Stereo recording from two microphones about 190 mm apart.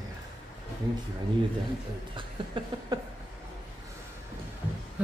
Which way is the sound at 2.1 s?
25° right (ahead or behind).